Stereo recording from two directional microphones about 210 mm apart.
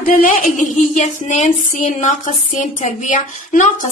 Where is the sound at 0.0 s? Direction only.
40° left (ahead or behind).